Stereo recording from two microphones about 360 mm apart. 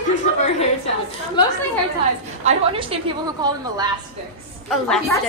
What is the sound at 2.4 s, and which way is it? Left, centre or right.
A woman's voice, centre.